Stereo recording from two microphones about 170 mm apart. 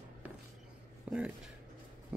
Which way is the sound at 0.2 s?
10° right (ahead or behind).